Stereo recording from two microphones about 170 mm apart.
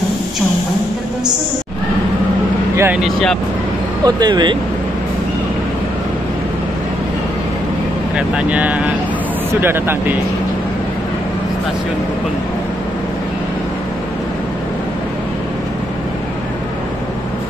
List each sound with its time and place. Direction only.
2.7 s speech: 15° right (ahead or behind)
3.0 s speech: centre (ahead or behind)
4.0 s speech: 25° right (ahead or behind)
8.2 s speech: 5° right (ahead or behind)